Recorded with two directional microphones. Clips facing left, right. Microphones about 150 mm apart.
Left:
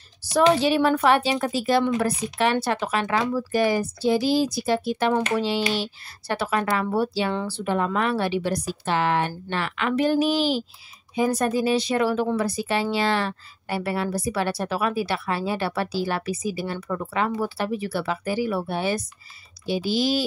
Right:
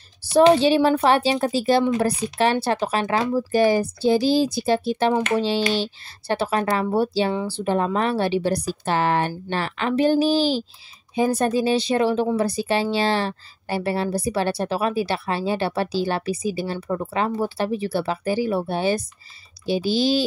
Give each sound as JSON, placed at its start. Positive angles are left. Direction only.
{"t": 0.2, "sound": "a woman's voice", "side_deg": -30}